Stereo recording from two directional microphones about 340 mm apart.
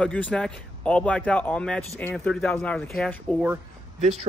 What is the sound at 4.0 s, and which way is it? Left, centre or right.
Speech, centre.